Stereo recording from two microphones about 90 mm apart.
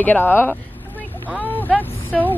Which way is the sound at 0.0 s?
20° left (ahead or behind).